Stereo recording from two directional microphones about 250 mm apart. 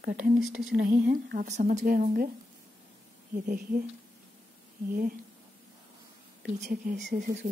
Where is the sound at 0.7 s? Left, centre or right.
Right.